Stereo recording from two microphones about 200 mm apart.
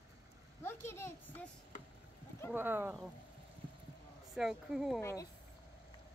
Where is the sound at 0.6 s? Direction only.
10° left (ahead or behind).